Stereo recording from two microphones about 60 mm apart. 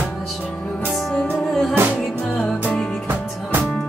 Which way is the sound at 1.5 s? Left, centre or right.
Centre.